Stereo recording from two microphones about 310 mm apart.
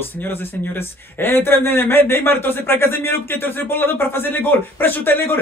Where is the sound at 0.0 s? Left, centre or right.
Centre.